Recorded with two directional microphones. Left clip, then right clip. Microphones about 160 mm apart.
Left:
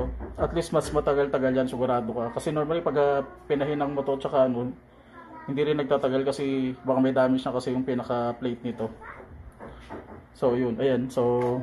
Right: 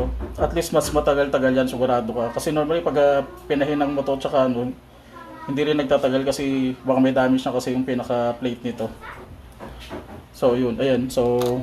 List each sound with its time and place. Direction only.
0.4 s speech: 15° left (ahead or behind)
5.5 s speech: 15° left (ahead or behind)
10.4 s speech: 15° left (ahead or behind)